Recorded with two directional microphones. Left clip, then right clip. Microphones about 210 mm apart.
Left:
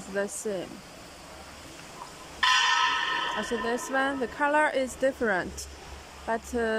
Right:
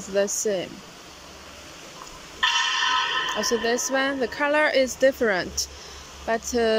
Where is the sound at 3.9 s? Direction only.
5° left (ahead or behind).